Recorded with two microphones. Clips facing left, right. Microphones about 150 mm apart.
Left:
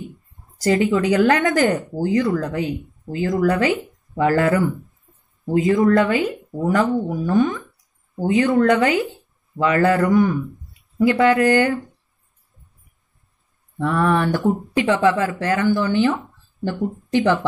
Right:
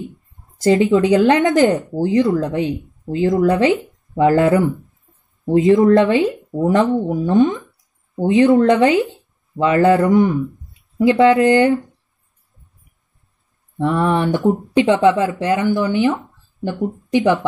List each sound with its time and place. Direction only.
0.6 s speech: 20° right (ahead or behind)
4.7 s a sound: centre (ahead or behind)
5.4 s speech: 25° right (ahead or behind)
13.7 s speech: 25° right (ahead or behind)
16.7 s speech: centre (ahead or behind)
17.1 s speech: 20° right (ahead or behind)